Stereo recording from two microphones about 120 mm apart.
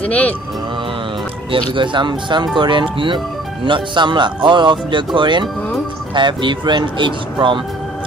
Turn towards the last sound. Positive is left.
turn(degrees=-40)  # may be behind; listen again after turning